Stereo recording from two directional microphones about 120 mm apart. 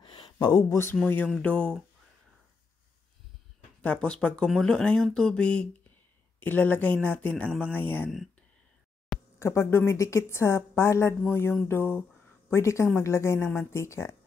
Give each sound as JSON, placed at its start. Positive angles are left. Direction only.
{"t": 0.0, "sound": "a sound", "side_deg": 45}
{"t": 0.7, "sound": "a woman's voice", "side_deg": 20}
{"t": 3.8, "sound": "speech", "side_deg": 10}
{"t": 9.4, "sound": "a woman's voice", "side_deg": 20}